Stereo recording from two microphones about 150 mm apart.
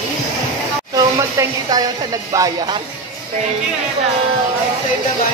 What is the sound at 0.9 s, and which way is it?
Speech, 25° right (ahead or behind).